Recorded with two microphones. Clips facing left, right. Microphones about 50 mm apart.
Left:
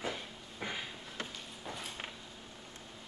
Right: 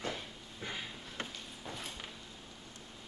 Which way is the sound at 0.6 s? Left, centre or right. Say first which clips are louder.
Left 2 dB; left.